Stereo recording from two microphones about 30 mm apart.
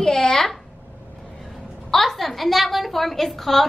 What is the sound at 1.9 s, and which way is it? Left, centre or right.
A woman's voice, centre.